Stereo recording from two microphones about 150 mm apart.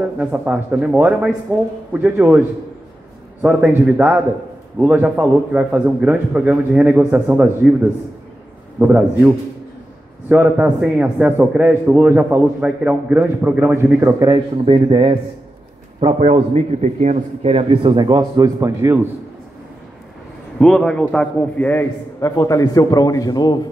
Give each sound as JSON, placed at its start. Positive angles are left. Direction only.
{"t": 0.2, "sound": "a man's voice", "side_deg": -10}
{"t": 3.4, "sound": "a man's voice", "side_deg": -10}
{"t": 8.7, "sound": "a man's voice", "side_deg": -10}
{"t": 20.5, "sound": "a man's voice", "side_deg": 5}